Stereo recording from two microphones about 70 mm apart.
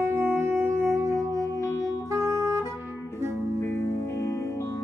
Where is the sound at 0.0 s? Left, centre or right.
Right.